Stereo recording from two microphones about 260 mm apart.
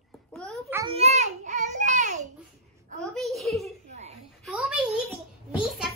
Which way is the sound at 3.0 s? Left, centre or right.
Centre.